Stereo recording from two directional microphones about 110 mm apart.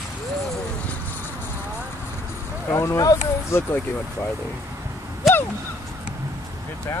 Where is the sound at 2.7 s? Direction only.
30° left (ahead or behind).